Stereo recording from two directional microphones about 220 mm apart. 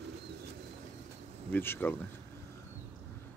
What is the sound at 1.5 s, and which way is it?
Speech, 10° left (ahead or behind).